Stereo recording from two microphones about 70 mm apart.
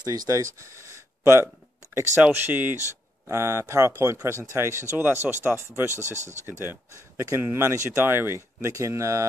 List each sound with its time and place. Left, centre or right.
0.0 s speech: right
2.2 s speech: right
3.3 s speech: right
4.9 s speech: right
8.6 s speech: right